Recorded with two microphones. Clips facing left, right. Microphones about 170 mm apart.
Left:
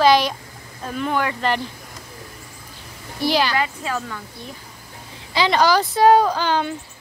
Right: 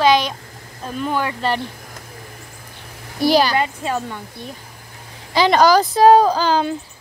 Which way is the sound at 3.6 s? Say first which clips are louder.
Right 3 dB; 25° right (ahead or behind).